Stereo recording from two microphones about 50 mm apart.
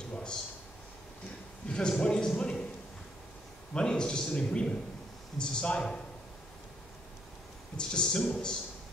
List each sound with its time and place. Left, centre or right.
0.1 s speech: centre
1.7 s a man's voice: centre
3.7 s a man's voice: centre
7.7 s a man's voice: centre